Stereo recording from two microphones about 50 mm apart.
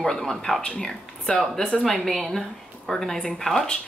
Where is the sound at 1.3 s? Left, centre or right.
Left.